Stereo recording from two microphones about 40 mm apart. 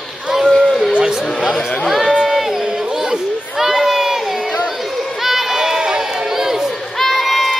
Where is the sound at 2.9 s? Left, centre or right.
Centre.